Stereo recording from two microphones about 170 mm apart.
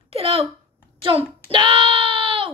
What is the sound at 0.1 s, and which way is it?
Speech, 35° right (ahead or behind).